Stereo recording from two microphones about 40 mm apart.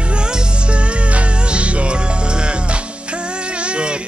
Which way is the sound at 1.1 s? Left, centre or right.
Right.